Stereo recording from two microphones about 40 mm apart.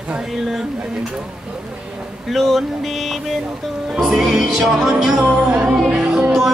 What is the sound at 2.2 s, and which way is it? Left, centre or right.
Speech, centre.